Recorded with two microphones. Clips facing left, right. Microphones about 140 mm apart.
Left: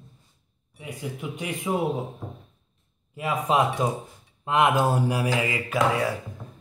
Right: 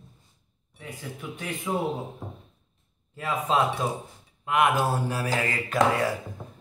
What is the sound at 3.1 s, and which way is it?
Mantra, 15° left (ahead or behind).